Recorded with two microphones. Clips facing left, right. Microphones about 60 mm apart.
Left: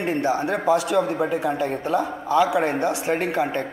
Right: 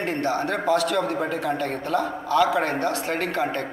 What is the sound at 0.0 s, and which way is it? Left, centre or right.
A man's voice, centre.